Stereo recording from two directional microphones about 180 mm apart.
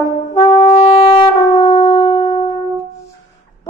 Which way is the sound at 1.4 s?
20° left (ahead or behind).